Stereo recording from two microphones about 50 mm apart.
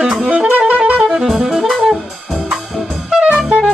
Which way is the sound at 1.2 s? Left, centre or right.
Centre.